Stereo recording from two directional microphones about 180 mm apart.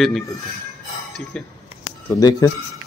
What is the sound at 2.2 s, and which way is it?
Speech, 20° left (ahead or behind).